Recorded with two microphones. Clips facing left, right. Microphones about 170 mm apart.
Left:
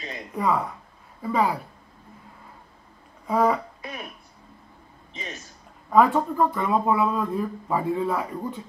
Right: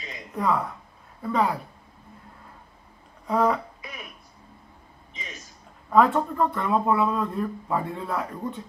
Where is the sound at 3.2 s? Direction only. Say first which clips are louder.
Left 1 dB; 5° left (ahead or behind).